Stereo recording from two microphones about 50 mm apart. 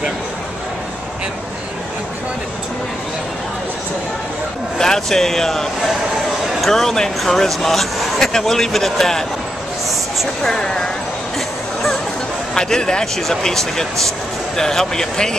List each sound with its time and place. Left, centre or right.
4.7 s speech: centre
10.5 s speech: centre
12.5 s speech: centre